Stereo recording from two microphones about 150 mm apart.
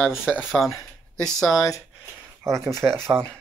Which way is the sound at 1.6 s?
20° left (ahead or behind).